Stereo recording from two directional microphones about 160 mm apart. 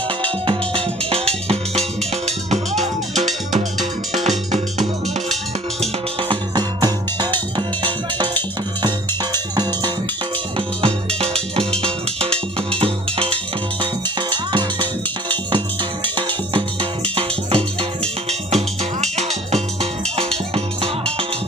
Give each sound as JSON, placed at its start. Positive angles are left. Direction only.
{"t": 0.2, "sound": "music", "side_deg": -35}
{"t": 6.2, "sound": "music", "side_deg": -25}
{"t": 11.1, "sound": "music", "side_deg": -40}
{"t": 12.8, "sound": "music", "side_deg": -35}
{"t": 17.1, "sound": "music", "side_deg": -35}